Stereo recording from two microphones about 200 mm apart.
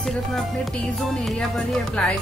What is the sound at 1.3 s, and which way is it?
Speech, 5° left (ahead or behind).